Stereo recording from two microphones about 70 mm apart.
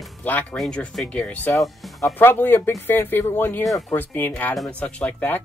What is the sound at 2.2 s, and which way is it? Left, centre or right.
Speech, left.